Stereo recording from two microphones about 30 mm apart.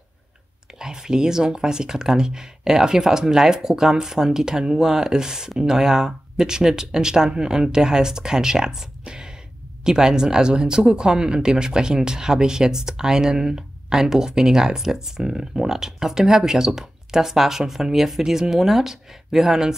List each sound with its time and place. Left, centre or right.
0.7 s speech: right